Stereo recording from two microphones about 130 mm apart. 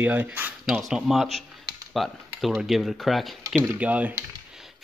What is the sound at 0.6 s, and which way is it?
Speech, 5° right (ahead or behind).